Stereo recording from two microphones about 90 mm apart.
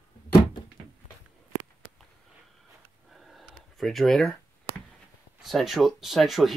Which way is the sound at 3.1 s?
Centre (ahead or behind).